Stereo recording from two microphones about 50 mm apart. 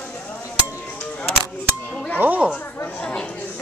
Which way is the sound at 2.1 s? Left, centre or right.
Right.